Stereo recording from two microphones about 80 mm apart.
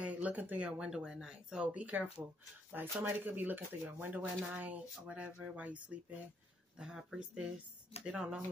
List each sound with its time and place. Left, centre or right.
0.0 s speech: centre
6.8 s speech: centre